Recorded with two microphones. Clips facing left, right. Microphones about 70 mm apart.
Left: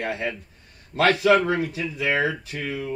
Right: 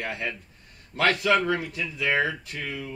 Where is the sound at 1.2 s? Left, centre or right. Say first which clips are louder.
Left 4 dB; left.